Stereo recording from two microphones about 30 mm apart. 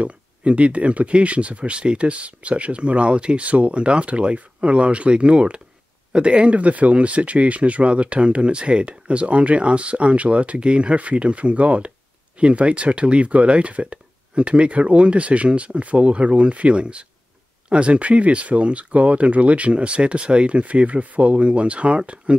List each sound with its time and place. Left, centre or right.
0.0 s speech: right
18.0 s speech: right